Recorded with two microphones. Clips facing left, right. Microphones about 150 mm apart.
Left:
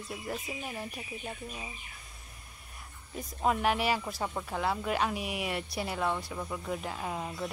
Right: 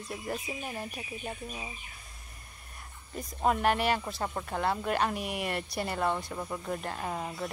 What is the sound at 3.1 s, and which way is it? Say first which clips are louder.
Speech: right 1 dB; centre (ahead or behind).